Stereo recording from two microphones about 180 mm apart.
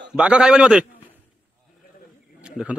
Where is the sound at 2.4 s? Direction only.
5° right (ahead or behind).